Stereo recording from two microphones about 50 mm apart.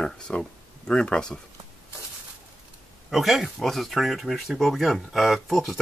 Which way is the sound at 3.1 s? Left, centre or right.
Centre.